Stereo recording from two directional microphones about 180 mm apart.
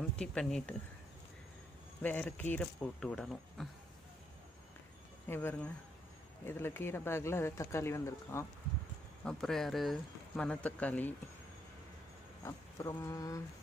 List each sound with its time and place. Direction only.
0.1 s speech: 5° left (ahead or behind)
2.0 s speech: 5° left (ahead or behind)
5.3 s speech: 10° left (ahead or behind)
9.2 s speech: 5° left (ahead or behind)
12.4 s speech: 15° left (ahead or behind)